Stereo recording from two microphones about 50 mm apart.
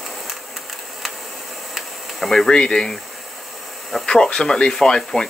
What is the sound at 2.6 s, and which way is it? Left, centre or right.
Speech, centre.